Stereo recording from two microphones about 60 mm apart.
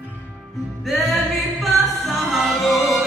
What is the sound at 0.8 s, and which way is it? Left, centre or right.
Music, centre.